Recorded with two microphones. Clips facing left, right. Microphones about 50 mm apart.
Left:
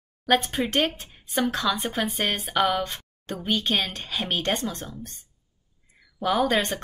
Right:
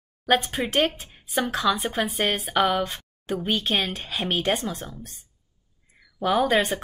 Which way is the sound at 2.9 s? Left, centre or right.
Centre.